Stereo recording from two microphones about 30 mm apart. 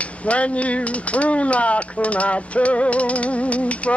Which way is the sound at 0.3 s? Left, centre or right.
Left.